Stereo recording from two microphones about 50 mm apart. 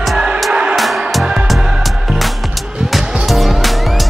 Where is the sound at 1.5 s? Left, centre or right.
Centre.